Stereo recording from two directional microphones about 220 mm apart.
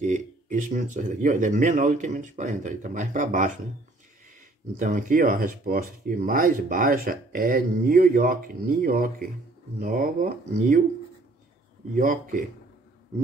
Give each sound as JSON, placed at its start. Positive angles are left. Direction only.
{"t": 0.0, "sound": "speech", "side_deg": -35}
{"t": 4.7, "sound": "speech", "side_deg": -35}
{"t": 11.9, "sound": "speech", "side_deg": -40}